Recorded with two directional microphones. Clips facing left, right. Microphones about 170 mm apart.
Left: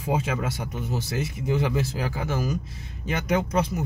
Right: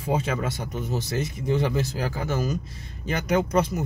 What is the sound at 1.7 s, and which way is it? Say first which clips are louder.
Speech: even; 35° right (ahead or behind).